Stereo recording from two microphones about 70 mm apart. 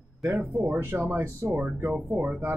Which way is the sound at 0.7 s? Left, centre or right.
Right.